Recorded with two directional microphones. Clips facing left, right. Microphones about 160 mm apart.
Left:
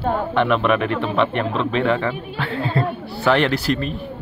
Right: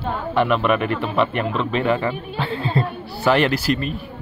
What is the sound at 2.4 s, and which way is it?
Speech, 25° right (ahead or behind).